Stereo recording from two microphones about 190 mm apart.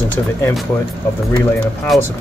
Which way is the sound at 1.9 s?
Centre (ahead or behind).